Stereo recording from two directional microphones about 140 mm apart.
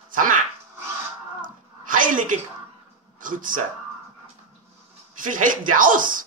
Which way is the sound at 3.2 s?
75° right (ahead or behind).